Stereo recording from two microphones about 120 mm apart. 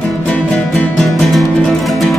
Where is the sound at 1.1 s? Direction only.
Centre (ahead or behind).